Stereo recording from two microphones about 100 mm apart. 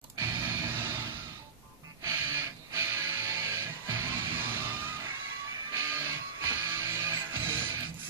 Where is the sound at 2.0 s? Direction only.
30° right (ahead or behind).